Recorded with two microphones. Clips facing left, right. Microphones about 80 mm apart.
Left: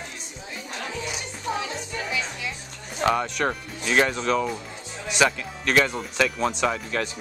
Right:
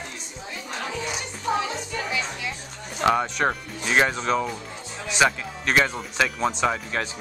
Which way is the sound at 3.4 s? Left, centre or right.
Centre.